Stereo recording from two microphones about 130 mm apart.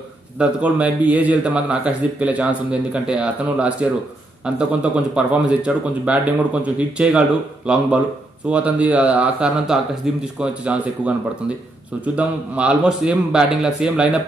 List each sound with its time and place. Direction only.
0.4 s speech: 10° right (ahead or behind)